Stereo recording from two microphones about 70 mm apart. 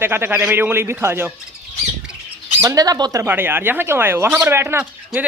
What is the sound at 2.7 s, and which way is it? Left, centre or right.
Speech, right.